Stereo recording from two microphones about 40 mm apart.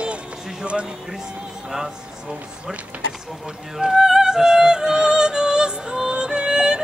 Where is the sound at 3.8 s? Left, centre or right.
Centre.